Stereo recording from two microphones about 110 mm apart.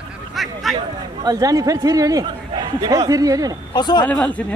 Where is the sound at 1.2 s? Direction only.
35° right (ahead or behind).